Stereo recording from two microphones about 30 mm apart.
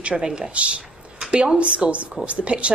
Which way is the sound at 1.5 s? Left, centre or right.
Right.